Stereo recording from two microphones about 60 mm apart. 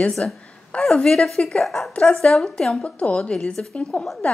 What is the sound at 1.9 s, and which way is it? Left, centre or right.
Speech, centre.